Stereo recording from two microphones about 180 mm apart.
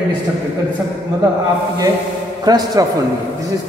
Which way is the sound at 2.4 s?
20° right (ahead or behind).